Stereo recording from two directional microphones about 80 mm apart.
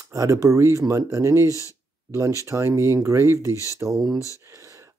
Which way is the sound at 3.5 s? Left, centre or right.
Left.